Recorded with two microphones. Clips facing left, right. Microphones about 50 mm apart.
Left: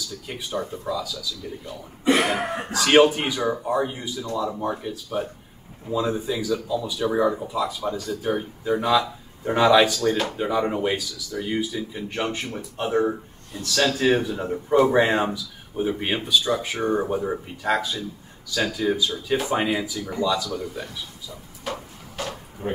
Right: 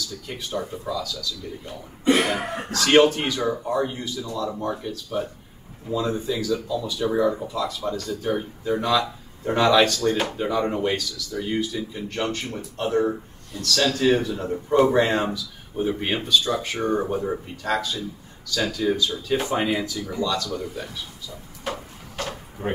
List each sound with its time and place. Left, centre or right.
0.3 s speech: centre
2.2 s speech: centre
20.4 s speech: centre
20.7 s speech: centre
22.6 s speech: right